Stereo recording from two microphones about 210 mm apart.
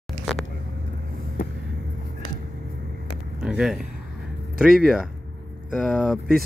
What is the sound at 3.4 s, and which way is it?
Speech, centre (ahead or behind).